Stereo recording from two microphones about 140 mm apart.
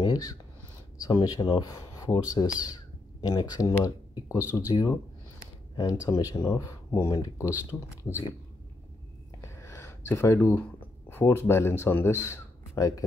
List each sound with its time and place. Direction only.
0.0 s speech: 25° left (ahead or behind)
4.4 s speech: 10° right (ahead or behind)
4.6 s speech: 30° left (ahead or behind)
9.4 s a sound: 20° left (ahead or behind)